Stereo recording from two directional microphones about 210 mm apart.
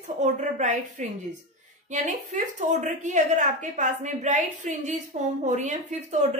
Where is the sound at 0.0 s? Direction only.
35° right (ahead or behind).